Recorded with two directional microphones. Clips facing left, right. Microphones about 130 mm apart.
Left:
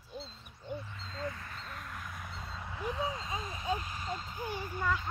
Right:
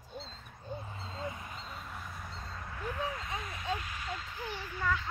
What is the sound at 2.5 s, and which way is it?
Vehicle, 15° left (ahead or behind).